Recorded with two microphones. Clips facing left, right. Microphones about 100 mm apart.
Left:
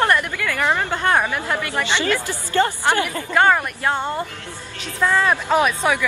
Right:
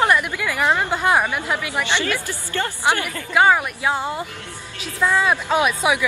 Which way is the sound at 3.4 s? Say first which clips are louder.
Right 1 dB; 5° right (ahead or behind).